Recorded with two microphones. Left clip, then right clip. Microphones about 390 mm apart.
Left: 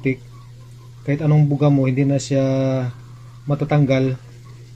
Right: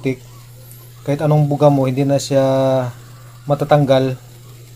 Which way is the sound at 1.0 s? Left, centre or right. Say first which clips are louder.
Right 4 dB; right.